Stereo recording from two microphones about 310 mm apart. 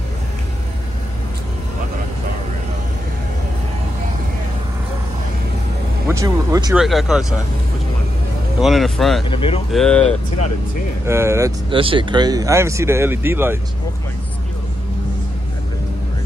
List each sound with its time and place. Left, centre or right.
6.0 s speech: centre
6.8 s speech: centre
8.5 s speech: centre
9.3 s speech: centre
9.7 s speech: centre
11.1 s speech: centre